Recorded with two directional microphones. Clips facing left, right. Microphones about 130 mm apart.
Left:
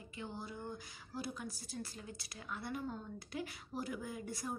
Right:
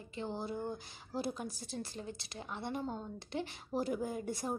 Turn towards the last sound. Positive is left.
turn(degrees=-30)  # may be behind; listen again after turning